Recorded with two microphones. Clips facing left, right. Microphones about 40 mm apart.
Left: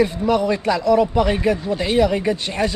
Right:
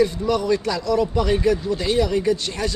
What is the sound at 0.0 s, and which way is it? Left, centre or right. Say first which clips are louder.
Speech: left 2 dB; left.